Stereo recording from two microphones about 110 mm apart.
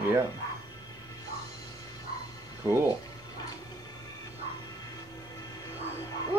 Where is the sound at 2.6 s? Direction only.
25° right (ahead or behind).